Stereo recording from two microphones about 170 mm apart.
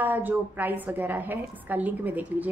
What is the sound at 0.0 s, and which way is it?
A woman's voice, 10° right (ahead or behind).